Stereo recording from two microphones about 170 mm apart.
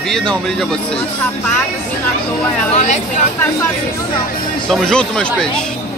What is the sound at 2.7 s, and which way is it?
Speech, 40° left (ahead or behind).